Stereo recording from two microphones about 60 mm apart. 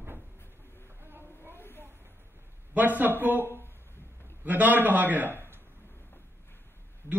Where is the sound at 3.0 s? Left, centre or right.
Right.